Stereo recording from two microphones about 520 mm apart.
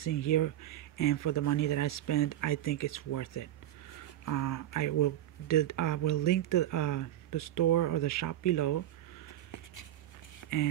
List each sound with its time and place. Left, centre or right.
0.0 s speech: left